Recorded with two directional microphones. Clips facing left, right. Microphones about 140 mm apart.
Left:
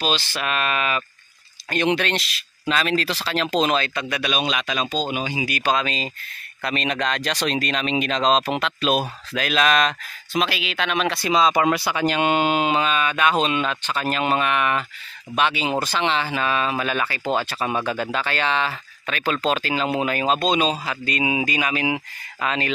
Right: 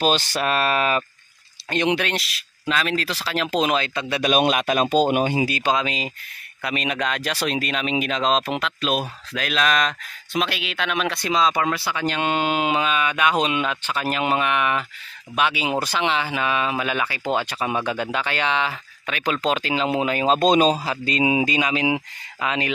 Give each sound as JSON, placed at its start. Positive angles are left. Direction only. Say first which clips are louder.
{"t": 0.0, "sound": "speech", "louder": "right 4 dB", "side_deg": -45}
{"t": 1.7, "sound": "speech", "louder": "even", "side_deg": -15}
{"t": 4.2, "sound": "speech", "louder": "right 7 dB", "side_deg": -45}
{"t": 5.4, "sound": "speech", "louder": "right 1 dB", "side_deg": -25}
{"t": 20.3, "sound": "speech", "louder": "right 8 dB", "side_deg": -40}
{"t": 20.8, "sound": "speech", "louder": "right 3 dB", "side_deg": -30}